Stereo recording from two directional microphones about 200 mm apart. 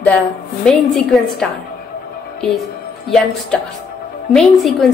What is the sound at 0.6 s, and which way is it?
Speech, 5° left (ahead or behind).